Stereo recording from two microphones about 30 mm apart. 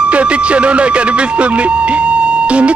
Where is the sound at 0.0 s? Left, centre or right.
Right.